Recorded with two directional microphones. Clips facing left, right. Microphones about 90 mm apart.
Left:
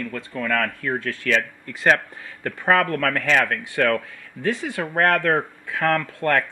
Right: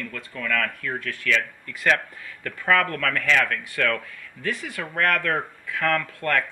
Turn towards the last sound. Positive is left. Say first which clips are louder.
# left 3 dB
turn(degrees=30)  # may be behind; listen again after turning